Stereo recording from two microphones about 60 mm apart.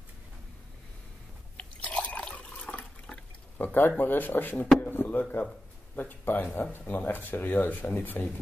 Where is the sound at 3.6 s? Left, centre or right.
Left.